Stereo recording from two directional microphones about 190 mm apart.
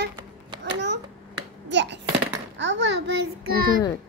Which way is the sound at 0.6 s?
65° right (ahead or behind).